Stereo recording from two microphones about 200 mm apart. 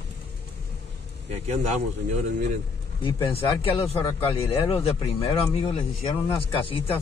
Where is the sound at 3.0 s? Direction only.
25° left (ahead or behind).